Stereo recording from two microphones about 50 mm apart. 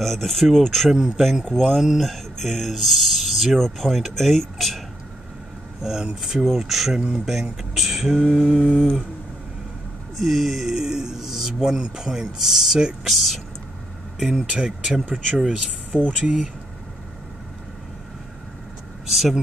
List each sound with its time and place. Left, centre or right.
0.0 s speech: centre
1.4 s speech: centre
1.8 s speech: centre
5.8 s speech: centre
10.1 s speech: centre
15.3 s speech: right
19.0 s speech: centre